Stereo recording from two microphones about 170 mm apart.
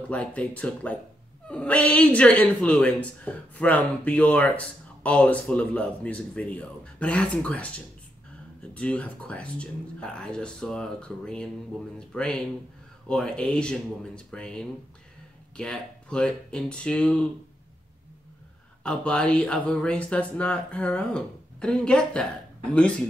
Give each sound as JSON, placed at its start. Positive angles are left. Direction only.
{"t": 0.1, "sound": "a woman's voice", "side_deg": 5}
{"t": 18.8, "sound": "a woman's voice", "side_deg": 5}